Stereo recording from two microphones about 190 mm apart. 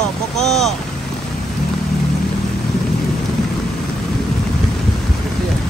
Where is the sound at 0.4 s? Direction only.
Centre (ahead or behind).